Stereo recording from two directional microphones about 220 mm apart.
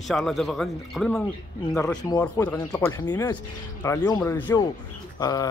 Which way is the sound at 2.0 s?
15° left (ahead or behind).